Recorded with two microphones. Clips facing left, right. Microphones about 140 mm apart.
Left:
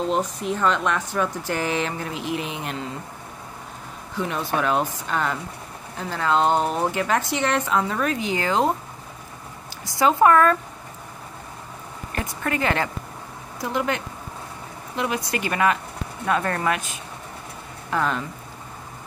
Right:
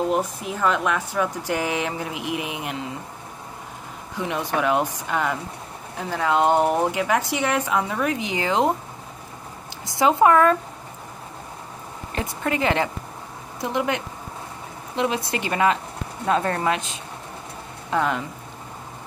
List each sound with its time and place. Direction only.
0.4 s speech: 5° right (ahead or behind)
4.2 s speech: 15° right (ahead or behind)
9.8 s speech: 20° right (ahead or behind)
12.2 s speech: 20° right (ahead or behind)